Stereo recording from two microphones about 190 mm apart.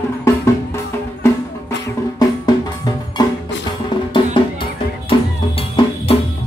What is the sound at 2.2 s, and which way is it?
Music, 20° left (ahead or behind).